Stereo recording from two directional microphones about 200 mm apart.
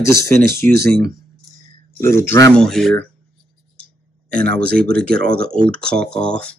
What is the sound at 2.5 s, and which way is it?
Speech, centre (ahead or behind).